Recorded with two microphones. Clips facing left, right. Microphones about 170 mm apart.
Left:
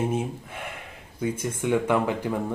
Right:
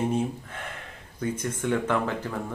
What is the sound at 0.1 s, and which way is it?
Speech, 10° left (ahead or behind).